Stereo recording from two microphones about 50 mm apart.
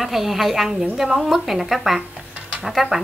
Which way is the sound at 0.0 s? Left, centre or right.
Centre.